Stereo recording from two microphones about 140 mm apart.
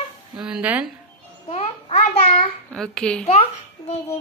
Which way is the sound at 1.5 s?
50° left (ahead or behind).